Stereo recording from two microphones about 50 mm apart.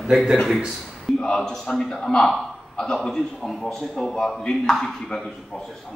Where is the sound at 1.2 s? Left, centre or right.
Centre.